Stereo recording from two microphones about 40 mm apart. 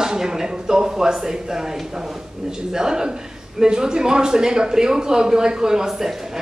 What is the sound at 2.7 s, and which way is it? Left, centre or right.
A man's voice, centre.